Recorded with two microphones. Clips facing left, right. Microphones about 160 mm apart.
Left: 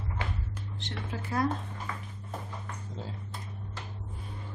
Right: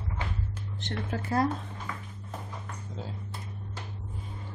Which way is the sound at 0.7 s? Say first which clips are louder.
Right 5 dB; 45° right (ahead or behind).